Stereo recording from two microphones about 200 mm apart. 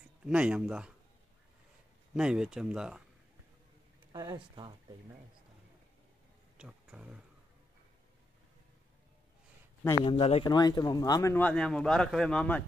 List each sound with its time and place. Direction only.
0.2 s speech: 5° right (ahead or behind)
2.1 s speech: 5° right (ahead or behind)
4.1 s speech: 20° right (ahead or behind)
6.6 s speech: 5° right (ahead or behind)
10.0 s speech: 30° left (ahead or behind); by 12.6 s 5° left (ahead or behind)